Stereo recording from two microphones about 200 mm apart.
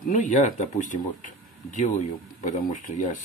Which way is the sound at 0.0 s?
40° left (ahead or behind).